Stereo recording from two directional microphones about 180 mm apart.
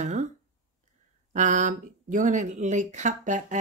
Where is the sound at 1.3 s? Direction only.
45° right (ahead or behind).